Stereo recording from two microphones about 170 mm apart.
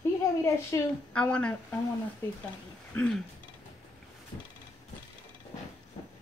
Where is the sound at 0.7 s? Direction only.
15° left (ahead or behind).